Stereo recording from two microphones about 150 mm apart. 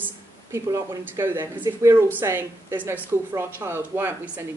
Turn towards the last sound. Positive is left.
turn(degrees=-15)  # may be behind; listen again after turning